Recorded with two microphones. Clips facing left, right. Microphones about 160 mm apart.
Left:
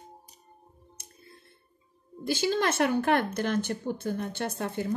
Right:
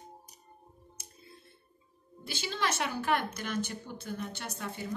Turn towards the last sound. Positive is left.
turn(degrees=55)  # may be behind; listen again after turning